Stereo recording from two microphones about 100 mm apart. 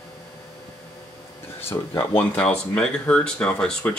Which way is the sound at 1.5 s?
25° left (ahead or behind).